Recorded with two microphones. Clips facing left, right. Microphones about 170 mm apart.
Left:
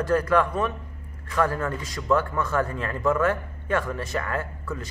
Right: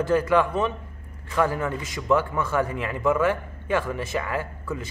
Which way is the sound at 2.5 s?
20° right (ahead or behind).